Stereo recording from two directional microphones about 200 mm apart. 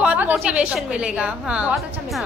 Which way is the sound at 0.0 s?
5° right (ahead or behind).